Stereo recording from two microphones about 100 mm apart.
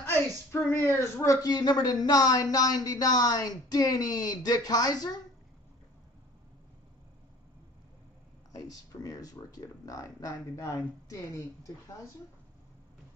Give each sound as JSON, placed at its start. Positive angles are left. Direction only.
{"t": 0.7, "sound": "speech", "side_deg": 25}
{"t": 8.5, "sound": "speech", "side_deg": 35}